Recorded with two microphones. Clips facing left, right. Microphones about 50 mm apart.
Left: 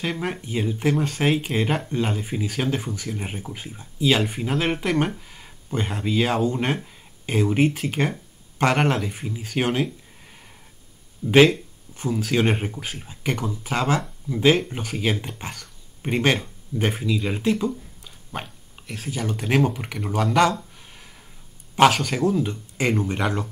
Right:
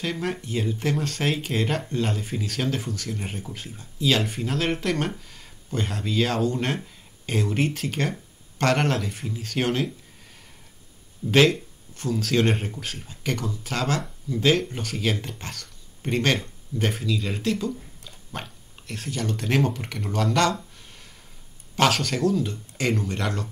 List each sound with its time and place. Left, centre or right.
0.0 s speech: centre
11.2 s speech: centre
21.9 s speech: centre